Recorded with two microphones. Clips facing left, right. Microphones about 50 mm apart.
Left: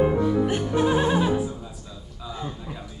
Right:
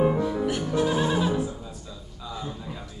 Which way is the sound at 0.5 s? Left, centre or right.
Centre.